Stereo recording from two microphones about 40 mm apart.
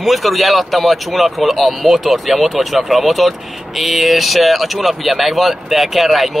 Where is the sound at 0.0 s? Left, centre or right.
Centre.